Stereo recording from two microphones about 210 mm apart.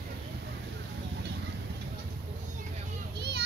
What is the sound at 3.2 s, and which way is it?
Children playing, 50° right (ahead or behind).